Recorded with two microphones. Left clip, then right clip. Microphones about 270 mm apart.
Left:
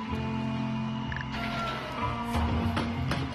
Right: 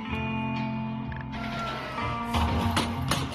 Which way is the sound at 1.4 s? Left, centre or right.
Centre.